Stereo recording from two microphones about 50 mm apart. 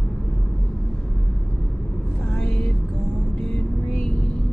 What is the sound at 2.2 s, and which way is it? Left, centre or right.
Vehicle, left.